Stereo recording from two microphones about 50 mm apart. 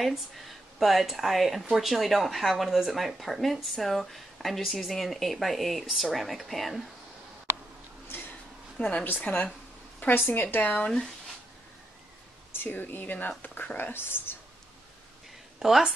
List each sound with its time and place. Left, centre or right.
0.0 s speech: centre
8.1 s a sound: left
8.7 s a woman's voice: left
9.2 s speech: left
10.9 s speech: centre
12.5 s speech: left
15.6 s speech: centre